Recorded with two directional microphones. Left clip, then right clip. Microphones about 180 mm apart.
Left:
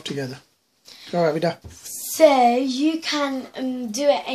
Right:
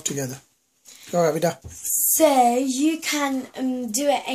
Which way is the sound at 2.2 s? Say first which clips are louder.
Left 3 dB; 15° left (ahead or behind).